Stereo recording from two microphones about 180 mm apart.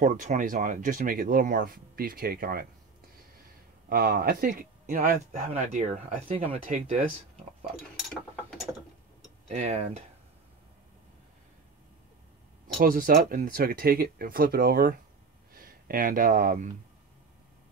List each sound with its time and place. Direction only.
0.0 s speech: 45° right (ahead or behind)
3.9 s speech: 55° right (ahead or behind)
5.5 s speech: 45° right (ahead or behind)
7.9 s a sound: centre (ahead or behind)
9.5 s speech: 40° right (ahead or behind)
12.7 s speech: 50° right (ahead or behind)